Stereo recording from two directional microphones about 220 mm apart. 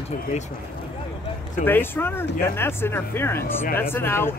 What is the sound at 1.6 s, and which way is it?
Speech, 10° left (ahead or behind).